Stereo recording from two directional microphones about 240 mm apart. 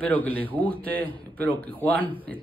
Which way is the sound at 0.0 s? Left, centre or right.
Centre.